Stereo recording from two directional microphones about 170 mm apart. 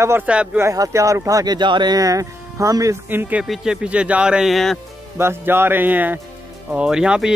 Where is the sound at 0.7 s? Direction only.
20° right (ahead or behind); by 4.7 s centre (ahead or behind).